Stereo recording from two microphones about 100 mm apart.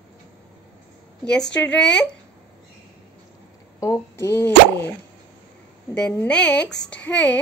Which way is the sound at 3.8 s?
30° left (ahead or behind).